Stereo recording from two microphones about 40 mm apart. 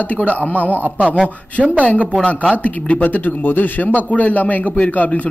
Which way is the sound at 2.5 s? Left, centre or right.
Left.